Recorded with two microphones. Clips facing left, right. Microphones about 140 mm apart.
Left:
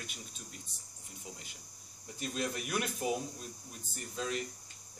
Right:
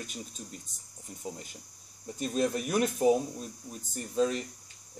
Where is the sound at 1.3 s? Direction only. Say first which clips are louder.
Right 10 dB; 45° right (ahead or behind).